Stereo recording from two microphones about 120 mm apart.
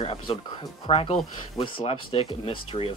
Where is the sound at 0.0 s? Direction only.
55° left (ahead or behind).